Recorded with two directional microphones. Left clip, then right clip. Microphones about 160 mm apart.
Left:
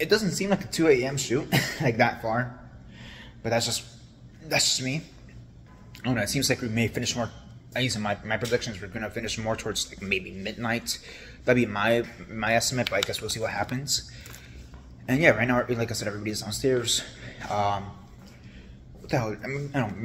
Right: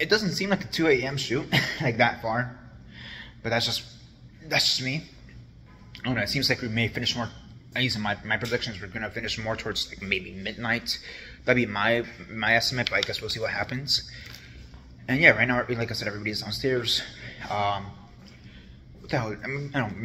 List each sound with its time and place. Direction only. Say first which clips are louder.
0.0 s speech: even; 15° left (ahead or behind)
3.0 s a sound: right 1 dB; 5° left (ahead or behind)
4.5 s speech: right 1 dB; 15° left (ahead or behind)
19.0 s speech: left 1 dB; 20° left (ahead or behind)